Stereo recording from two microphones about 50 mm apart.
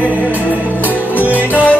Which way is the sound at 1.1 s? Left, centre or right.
Right.